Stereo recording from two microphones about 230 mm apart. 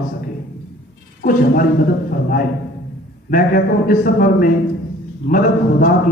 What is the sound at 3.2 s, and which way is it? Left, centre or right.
A man's voice, left.